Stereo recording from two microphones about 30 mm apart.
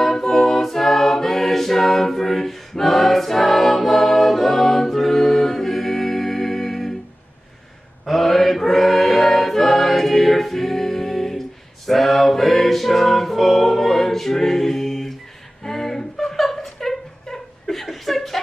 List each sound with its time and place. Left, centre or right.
0.0 s a capella: centre
8.0 s choir: centre
15.6 s a sound: centre
16.3 s chuckle: centre